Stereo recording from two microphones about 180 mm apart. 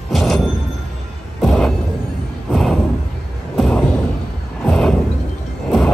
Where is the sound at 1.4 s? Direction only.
Centre (ahead or behind).